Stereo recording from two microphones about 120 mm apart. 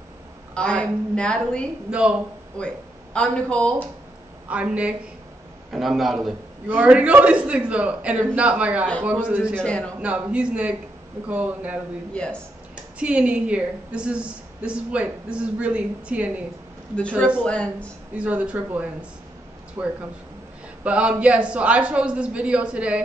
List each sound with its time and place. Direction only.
0.6 s a woman's voice: 10° left (ahead or behind)
1.9 s a woman's voice: 10° right (ahead or behind)
2.6 s speech: 10° left (ahead or behind)
4.5 s a woman's voice: 10° right (ahead or behind)
6.7 s a woman's voice: 15° right (ahead or behind)
9.6 s a woman's voice: 10° left (ahead or behind)
9.9 s a woman's voice: 10° right (ahead or behind)
12.1 s a woman's voice: 10° left (ahead or behind)
13.0 s a woman's voice: 10° right (ahead or behind)
17.4 s a woman's voice: 10° left (ahead or behind)
18.1 s a woman's voice: 10° right (ahead or behind)
20.8 s a woman's voice: 10° right (ahead or behind)